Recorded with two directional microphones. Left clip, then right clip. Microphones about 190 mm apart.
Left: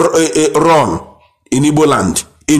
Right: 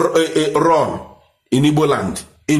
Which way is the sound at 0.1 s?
35° left (ahead or behind).